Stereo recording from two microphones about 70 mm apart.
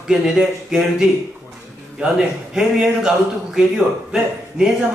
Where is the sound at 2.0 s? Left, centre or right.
Centre.